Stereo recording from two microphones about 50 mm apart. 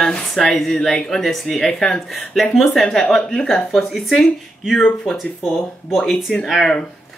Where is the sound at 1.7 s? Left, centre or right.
Centre.